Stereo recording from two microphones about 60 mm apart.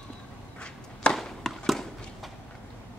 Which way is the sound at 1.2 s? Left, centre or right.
Centre.